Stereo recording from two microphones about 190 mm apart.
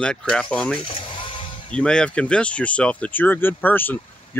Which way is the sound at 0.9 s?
25° left (ahead or behind).